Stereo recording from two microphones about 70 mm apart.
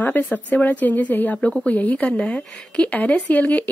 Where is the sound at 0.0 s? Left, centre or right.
Left.